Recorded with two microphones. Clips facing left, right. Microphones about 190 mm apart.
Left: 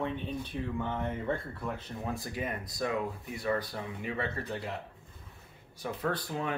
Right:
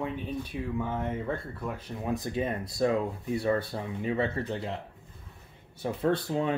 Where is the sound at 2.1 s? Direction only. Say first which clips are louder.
Right 6 dB; 25° right (ahead or behind).